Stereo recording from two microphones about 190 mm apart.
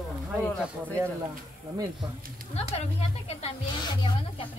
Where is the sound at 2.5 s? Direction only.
35° left (ahead or behind).